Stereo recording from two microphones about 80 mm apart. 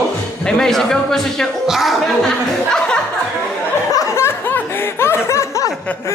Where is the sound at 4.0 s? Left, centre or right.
Left.